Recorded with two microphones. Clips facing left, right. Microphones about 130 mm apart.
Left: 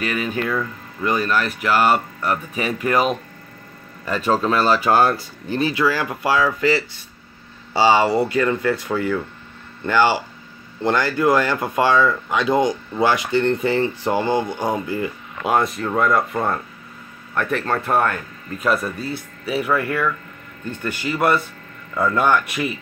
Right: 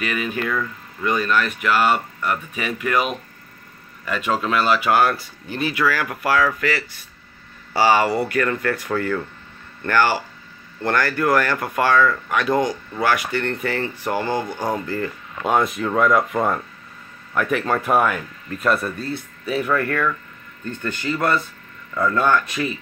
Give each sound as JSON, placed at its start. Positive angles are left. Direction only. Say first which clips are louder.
{"t": 1.1, "sound": "speech", "louder": "even", "side_deg": 5}
{"t": 1.4, "sound": "speech", "louder": "left 1 dB", "side_deg": 35}
{"t": 15.5, "sound": "speech", "louder": "even", "side_deg": 0}